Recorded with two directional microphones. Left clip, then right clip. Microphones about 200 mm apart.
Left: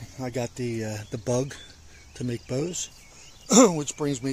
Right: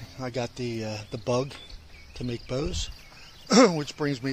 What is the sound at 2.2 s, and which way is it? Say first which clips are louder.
Speech: left 1 dB; 30° left (ahead or behind).